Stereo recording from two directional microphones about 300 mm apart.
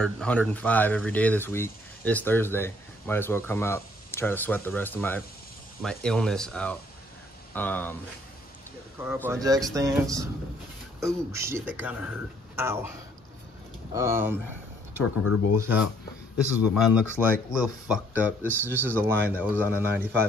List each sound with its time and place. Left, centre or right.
0.0 s speech: centre
9.0 s speech: centre
13.9 s speech: centre
15.2 s speech: left
16.7 s speech: centre